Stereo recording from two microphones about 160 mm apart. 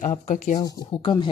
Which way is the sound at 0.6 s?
30° left (ahead or behind).